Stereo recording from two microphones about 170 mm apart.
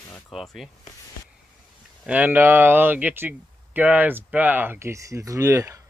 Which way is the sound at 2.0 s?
10° right (ahead or behind).